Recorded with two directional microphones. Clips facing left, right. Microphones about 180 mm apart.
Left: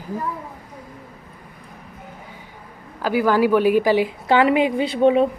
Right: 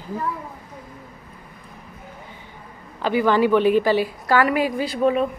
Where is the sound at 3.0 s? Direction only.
5° left (ahead or behind); by 5.3 s 25° left (ahead or behind).